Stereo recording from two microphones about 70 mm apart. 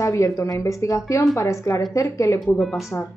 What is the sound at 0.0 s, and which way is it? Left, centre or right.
Speech, left.